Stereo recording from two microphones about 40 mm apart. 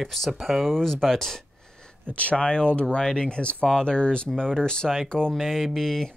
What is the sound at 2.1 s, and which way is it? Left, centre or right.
Speech, left.